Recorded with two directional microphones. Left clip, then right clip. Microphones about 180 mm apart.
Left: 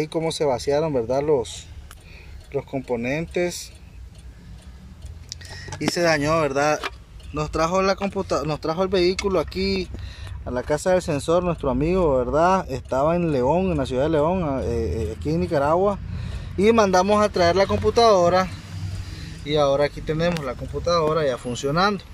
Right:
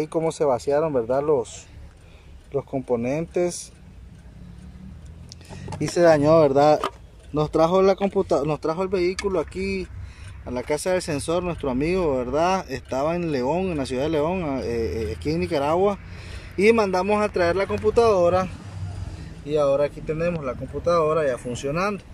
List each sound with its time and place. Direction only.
0.0 s speech: 10° right (ahead or behind)
5.3 s speech: 15° right (ahead or behind)